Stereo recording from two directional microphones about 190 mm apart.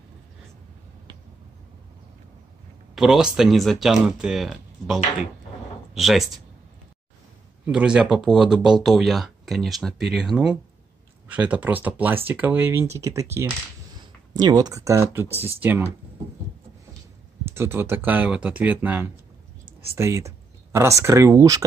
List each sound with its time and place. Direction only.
2.9 s speech: 5° right (ahead or behind)
7.6 s speech: 5° right (ahead or behind)
17.5 s speech: 10° right (ahead or behind)